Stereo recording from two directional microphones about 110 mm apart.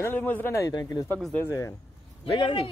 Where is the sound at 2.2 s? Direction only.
50° left (ahead or behind).